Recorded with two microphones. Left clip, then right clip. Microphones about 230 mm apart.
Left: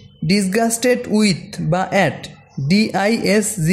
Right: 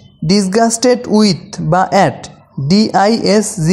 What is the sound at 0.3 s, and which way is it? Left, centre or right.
Speech, centre.